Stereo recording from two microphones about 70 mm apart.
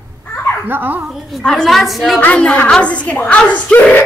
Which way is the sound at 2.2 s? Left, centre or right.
Centre.